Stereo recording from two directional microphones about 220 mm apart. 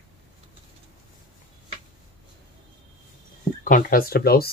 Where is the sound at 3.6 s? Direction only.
40° left (ahead or behind).